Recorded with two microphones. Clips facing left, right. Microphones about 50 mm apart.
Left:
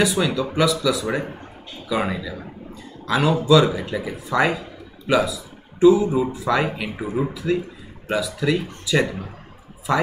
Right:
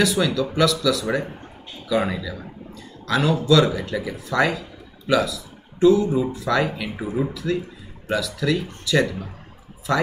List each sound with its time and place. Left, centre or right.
0.0 s a man's voice: centre